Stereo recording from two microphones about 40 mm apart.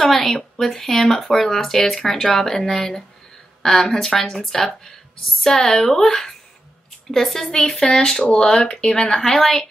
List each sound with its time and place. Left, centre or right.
0.1 s speech: centre
7.1 s speech: centre
9.2 s speech: centre